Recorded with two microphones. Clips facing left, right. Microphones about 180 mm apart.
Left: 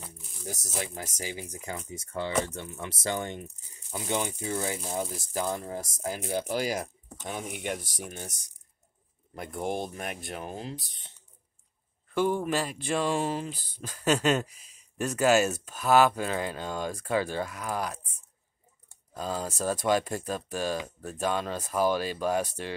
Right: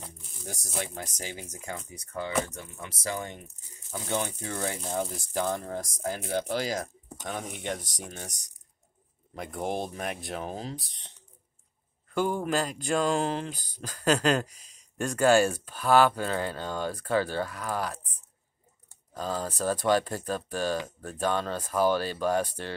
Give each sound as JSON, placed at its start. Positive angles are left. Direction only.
{"t": 0.7, "sound": "speech", "side_deg": 5}
{"t": 3.9, "sound": "speech", "side_deg": 15}
{"t": 12.1, "sound": "speech", "side_deg": 0}